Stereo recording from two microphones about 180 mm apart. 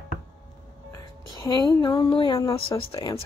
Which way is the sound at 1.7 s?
25° left (ahead or behind).